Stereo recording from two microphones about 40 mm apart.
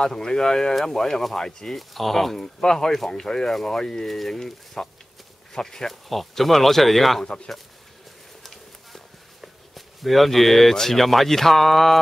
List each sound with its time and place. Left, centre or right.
0.0 s speech: centre
6.0 s speech: centre
8.5 s a sound: centre